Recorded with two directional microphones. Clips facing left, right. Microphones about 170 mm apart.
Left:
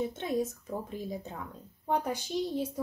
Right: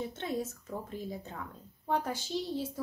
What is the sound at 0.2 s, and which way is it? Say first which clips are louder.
Speech: left 4 dB; 15° left (ahead or behind).